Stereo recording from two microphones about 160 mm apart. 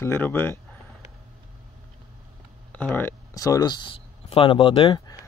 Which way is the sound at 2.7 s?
10° left (ahead or behind).